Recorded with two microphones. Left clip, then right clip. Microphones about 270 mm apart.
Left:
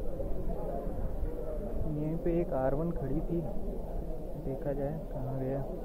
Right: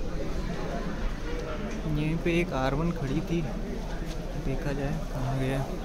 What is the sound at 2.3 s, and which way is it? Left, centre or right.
Speech, centre.